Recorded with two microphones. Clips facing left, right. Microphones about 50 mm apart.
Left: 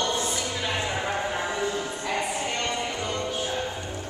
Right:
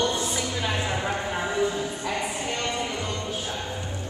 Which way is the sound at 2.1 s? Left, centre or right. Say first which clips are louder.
Left 3 dB; centre.